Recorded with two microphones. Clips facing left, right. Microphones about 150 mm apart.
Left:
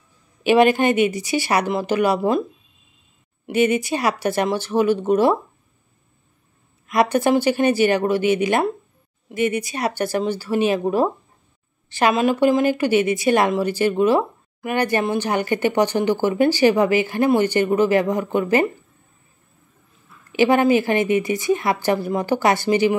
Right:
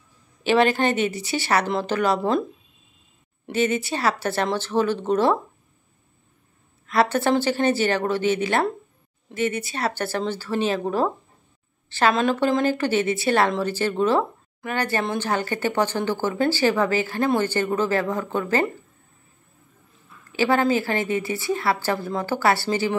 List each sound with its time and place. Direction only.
0.4 s speech: 15° left (ahead or behind)
3.4 s speech: 15° left (ahead or behind)
6.9 s speech: 15° left (ahead or behind)
20.3 s speech: 15° left (ahead or behind)